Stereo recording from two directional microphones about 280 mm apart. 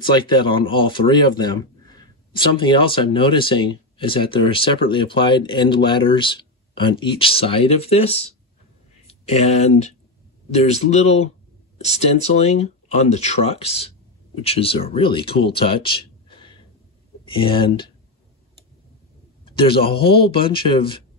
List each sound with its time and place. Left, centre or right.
0.1 s a man's voice: centre
19.4 s a man's voice: centre